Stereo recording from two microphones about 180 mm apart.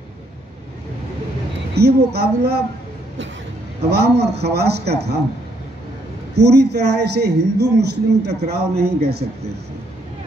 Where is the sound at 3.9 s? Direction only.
65° right (ahead or behind).